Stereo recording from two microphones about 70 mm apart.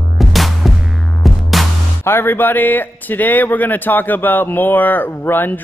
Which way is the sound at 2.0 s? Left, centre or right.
Left.